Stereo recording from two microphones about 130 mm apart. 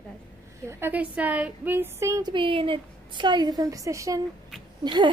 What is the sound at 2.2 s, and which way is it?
A woman's voice, 40° right (ahead or behind).